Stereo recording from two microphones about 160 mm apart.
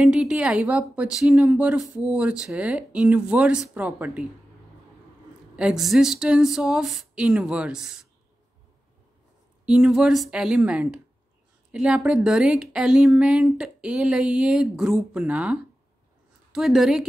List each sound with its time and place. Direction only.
0.0 s speech: 5° right (ahead or behind)
5.6 s speech: 5° right (ahead or behind)
9.7 s speech: 5° right (ahead or behind)